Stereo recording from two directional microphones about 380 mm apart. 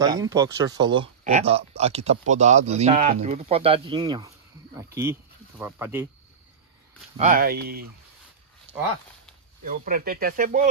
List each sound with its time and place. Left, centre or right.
0.0 s speech: centre
5.6 s speech: centre
7.2 s speech: right
9.7 s speech: right